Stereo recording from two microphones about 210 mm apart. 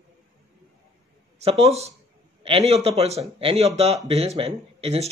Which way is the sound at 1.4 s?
30° right (ahead or behind).